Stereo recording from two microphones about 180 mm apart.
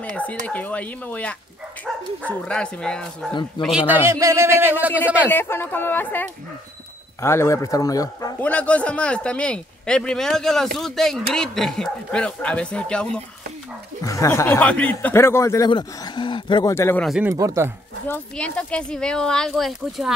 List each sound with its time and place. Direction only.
0.1 s speech: 10° left (ahead or behind)
3.6 s a man's voice: 5° right (ahead or behind)
5.3 s speech: 10° left (ahead or behind)
8.4 s speech: 5° left (ahead or behind)
14.0 s speech: 15° left (ahead or behind)
15.7 s speech: 25° left (ahead or behind)
16.7 s speech: 15° left (ahead or behind)
17.2 s a man's voice: 15° right (ahead or behind)
18.0 s speech: 10° left (ahead or behind)